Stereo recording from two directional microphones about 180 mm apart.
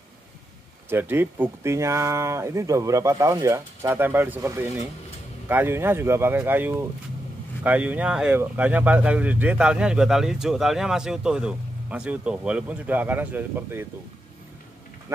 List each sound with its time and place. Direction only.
0.8 s speech: 10° right (ahead or behind)
15.1 s speech: 15° right (ahead or behind)